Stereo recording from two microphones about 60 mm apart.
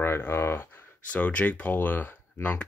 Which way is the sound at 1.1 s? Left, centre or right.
Left.